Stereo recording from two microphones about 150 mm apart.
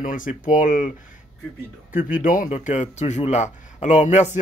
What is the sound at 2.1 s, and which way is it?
Speech, 65° left (ahead or behind).